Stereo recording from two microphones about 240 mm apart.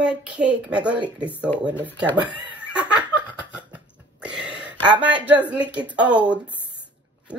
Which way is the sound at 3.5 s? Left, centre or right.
Centre.